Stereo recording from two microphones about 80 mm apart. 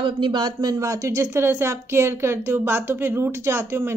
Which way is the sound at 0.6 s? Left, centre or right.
Right.